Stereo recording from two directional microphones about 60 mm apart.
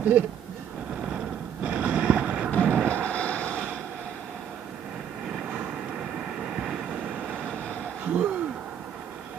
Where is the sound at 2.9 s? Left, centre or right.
Left.